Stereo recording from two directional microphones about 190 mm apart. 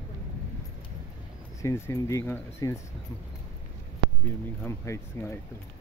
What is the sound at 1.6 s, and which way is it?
Speech, 15° left (ahead or behind).